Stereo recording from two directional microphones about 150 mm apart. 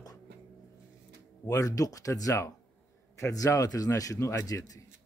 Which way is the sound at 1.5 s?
20° left (ahead or behind).